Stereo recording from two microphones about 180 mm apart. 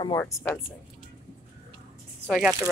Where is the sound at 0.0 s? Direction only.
20° left (ahead or behind).